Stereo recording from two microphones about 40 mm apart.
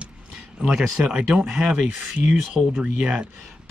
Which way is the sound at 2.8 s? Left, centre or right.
Right.